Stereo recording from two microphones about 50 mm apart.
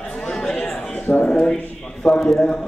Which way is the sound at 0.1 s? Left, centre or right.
Centre.